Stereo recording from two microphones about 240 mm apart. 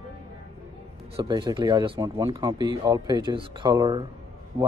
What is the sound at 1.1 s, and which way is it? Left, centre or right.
A man's voice, centre.